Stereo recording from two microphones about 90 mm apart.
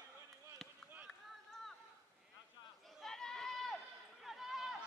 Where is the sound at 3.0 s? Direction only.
5° left (ahead or behind).